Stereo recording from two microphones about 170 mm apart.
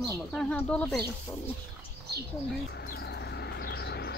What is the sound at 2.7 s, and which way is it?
Bird, 65° left (ahead or behind).